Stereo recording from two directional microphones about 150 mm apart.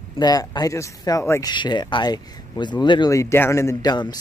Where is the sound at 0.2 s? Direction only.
25° left (ahead or behind).